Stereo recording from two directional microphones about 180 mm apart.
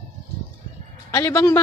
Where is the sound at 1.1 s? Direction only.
15° left (ahead or behind).